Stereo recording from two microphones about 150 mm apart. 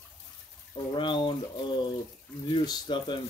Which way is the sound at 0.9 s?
30° left (ahead or behind).